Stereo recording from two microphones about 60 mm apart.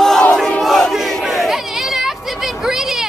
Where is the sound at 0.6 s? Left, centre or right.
Centre.